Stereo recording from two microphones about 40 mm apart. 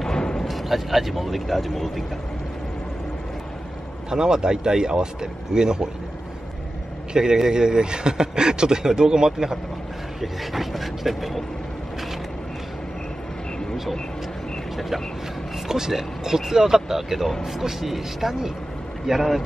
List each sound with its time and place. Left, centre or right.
0.0 s a sound: centre
0.5 s speech: centre
4.1 s a man's voice: centre
7.2 s a man's voice: centre
10.2 s speech: centre
15.7 s a man's voice: centre